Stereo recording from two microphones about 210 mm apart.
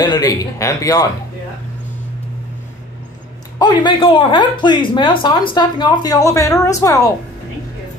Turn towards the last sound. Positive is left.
turn(degrees=15)  # may be behind; listen again after turning